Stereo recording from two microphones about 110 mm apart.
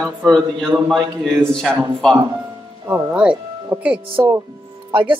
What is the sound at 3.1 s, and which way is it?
Music, 10° right (ahead or behind).